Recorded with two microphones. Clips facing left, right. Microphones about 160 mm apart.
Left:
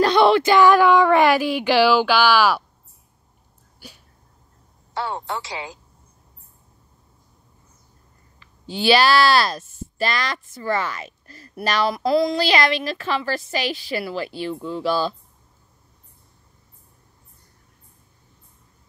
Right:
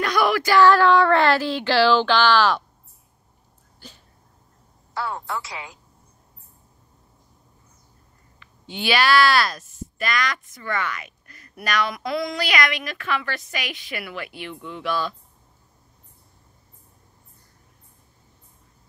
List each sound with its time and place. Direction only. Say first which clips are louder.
0.0 s child singing: left 6 dB; 25° left (ahead or behind); by 2.6 s 10° left (ahead or behind)
3.8 s dog: left 1 dB; 10° left (ahead or behind)
4.9 s speech: left 2 dB; 25° left (ahead or behind)
8.4 s speech: left 5 dB; 35° left (ahead or behind)